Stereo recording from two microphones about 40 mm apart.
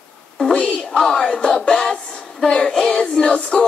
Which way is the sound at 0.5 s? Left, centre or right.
Left.